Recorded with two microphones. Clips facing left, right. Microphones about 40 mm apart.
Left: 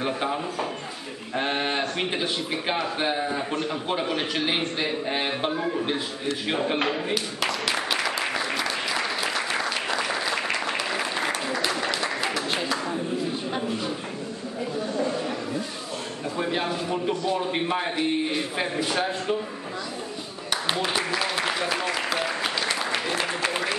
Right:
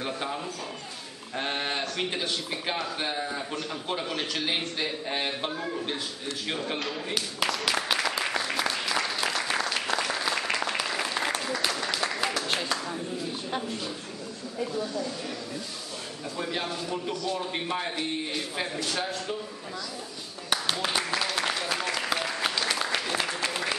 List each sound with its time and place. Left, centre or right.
0.0 s a man's voice: centre
7.4 s applause: centre
11.9 s a sound: centre
12.7 s a sound: centre
13.6 s speech: left
16.3 s a man's voice: left
20.8 s applause: centre